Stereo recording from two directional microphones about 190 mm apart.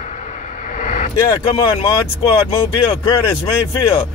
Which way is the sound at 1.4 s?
30° left (ahead or behind).